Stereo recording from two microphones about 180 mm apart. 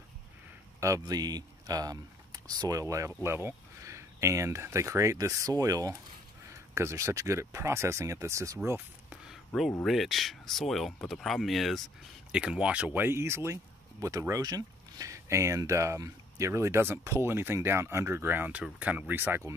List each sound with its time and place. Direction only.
0.7 s speech: 15° right (ahead or behind)
8.6 s a sound: 10° right (ahead or behind)
9.5 s speech: 10° left (ahead or behind); by 19.5 s 10° right (ahead or behind)